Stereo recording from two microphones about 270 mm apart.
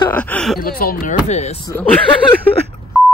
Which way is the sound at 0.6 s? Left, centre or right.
Left.